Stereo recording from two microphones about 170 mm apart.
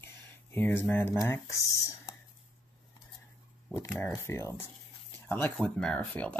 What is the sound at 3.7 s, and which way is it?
Speech, 15° left (ahead or behind).